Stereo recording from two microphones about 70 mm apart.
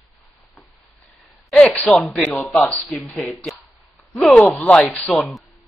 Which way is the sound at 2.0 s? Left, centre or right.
Centre.